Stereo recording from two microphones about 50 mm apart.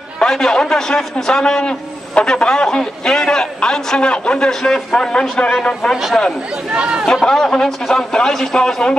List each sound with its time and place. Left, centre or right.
0.2 s a man's voice: centre
6.7 s speech: right
7.2 s a man's voice: centre